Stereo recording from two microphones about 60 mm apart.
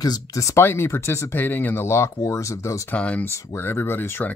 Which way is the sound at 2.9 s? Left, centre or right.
Left.